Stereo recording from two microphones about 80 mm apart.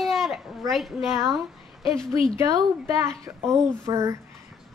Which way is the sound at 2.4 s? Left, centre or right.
Right.